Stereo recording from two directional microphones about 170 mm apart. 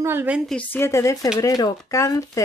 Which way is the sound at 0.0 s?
10° right (ahead or behind).